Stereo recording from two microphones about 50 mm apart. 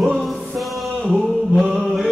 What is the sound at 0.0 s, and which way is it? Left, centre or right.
Music, centre.